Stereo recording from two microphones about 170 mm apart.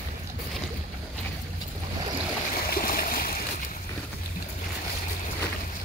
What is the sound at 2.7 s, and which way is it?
Stream, 60° left (ahead or behind).